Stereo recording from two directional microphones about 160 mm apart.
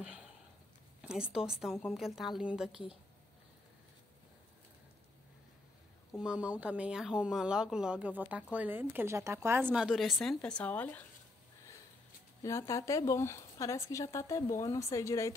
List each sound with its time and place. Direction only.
0.0 s sniff: 5° right (ahead or behind)
1.0 s a woman's voice: 5° right (ahead or behind)
6.1 s speech: 5° right (ahead or behind); by 11.1 s 10° left (ahead or behind)
12.4 s speech: 20° left (ahead or behind)